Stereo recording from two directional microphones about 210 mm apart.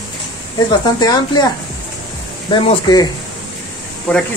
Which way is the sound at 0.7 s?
20° left (ahead or behind).